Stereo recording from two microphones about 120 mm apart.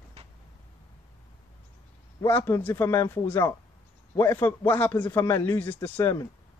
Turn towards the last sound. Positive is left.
turn(degrees=20)  # may be behind; listen again after turning